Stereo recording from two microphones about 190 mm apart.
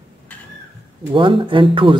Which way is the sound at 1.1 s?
25° right (ahead or behind).